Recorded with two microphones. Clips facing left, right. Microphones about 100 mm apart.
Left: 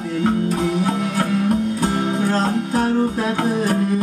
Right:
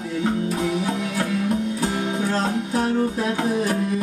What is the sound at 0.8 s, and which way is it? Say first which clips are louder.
Music: left 4 dB; 40° left (ahead or behind).